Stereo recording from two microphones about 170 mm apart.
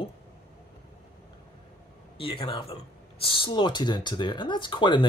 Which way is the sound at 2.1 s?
30° left (ahead or behind).